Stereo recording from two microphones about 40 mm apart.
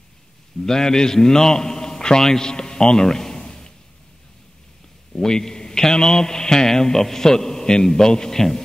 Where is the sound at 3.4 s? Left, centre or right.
Centre.